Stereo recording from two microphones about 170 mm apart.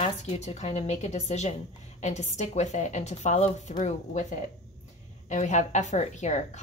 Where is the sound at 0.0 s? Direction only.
40° left (ahead or behind).